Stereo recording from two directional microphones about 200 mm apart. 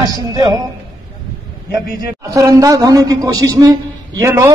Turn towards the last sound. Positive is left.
turn(degrees=-15)  # may be behind; listen again after turning